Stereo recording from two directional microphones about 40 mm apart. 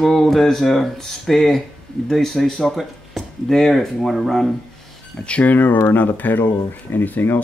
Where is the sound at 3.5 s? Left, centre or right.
Centre.